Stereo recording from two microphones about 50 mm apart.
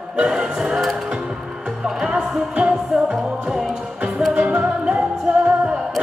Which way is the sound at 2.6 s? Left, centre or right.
Right.